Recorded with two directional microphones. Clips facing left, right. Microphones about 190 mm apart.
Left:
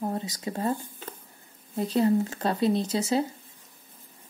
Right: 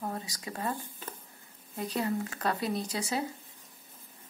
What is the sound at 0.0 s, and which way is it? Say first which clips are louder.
A woman's voice: left 7 dB; 25° left (ahead or behind).